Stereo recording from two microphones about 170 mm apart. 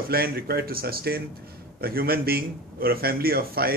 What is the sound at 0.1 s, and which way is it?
A man's voice, 65° right (ahead or behind).